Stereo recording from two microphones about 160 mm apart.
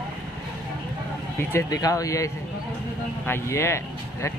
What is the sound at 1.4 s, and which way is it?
Speech, 15° left (ahead or behind).